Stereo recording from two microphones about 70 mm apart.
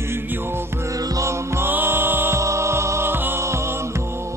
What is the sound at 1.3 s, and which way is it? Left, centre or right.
Music, right.